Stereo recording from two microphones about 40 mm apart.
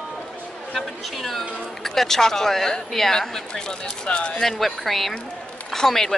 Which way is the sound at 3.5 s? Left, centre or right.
Left.